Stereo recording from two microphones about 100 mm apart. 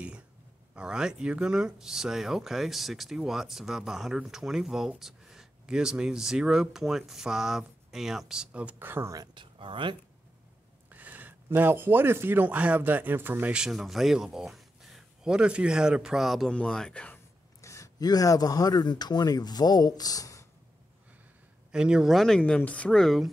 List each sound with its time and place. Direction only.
0.7 s speech: 5° right (ahead or behind)
9.3 s speech: 55° right (ahead or behind)
10.9 s a sound: 15° right (ahead or behind)
11.4 s speech: 20° right (ahead or behind); by 17.2 s 10° left (ahead or behind)
17.6 s speech: 30° left (ahead or behind)
21.7 s speech: 10° right (ahead or behind)